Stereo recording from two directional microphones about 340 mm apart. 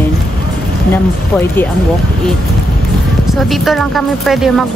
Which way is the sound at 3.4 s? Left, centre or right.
Centre.